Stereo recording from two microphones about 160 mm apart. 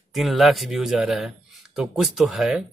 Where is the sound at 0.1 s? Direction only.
Centre (ahead or behind).